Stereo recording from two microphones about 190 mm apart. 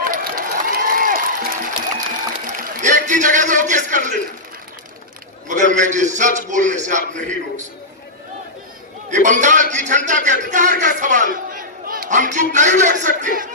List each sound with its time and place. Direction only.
0.0 s crowd: 45° right (ahead or behind)
0.9 s applause: 50° right (ahead or behind)
2.4 s a man's voice: 40° right (ahead or behind)
5.5 s a man's voice: 40° right (ahead or behind)
9.1 s a man's voice: 40° right (ahead or behind)